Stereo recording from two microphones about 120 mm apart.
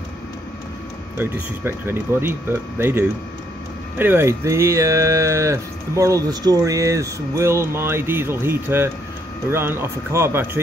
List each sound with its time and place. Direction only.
1.1 s speech: 20° right (ahead or behind)